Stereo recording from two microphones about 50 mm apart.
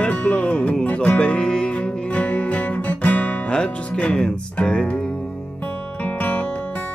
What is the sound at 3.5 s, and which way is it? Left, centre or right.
Music, left.